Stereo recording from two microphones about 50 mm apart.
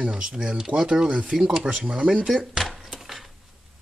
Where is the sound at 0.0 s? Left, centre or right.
Centre.